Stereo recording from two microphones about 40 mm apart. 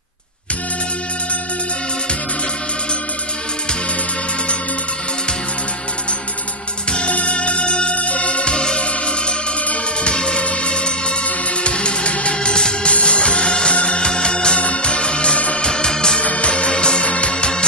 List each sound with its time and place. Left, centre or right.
6.9 s music: left
15.3 s music: left
15.6 s music: centre
16.2 s music: left